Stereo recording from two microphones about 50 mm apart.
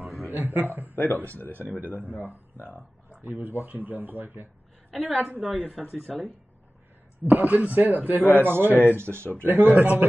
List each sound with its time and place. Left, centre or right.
0.2 s a man's voice: right
0.9 s a man's voice: left
1.7 s speech: right
2.1 s speech: left
3.2 s speech: right
4.9 s speech: right
6.0 s speech: left
7.2 s speech: right
8.2 s a man's voice: left
8.5 s speech: right
9.4 s speech: right